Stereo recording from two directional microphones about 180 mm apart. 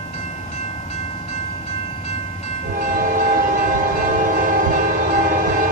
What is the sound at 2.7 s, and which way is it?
Train, 50° right (ahead or behind).